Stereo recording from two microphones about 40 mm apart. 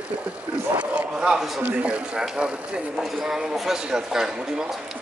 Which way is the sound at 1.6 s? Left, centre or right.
Right.